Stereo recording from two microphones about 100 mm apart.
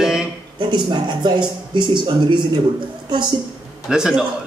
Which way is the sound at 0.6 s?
50° right (ahead or behind).